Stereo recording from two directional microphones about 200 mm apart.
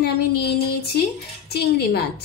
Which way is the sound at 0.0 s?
55° left (ahead or behind).